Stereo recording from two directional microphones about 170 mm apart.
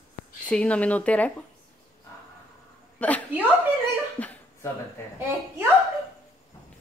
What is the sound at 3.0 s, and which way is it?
Speech, 10° left (ahead or behind).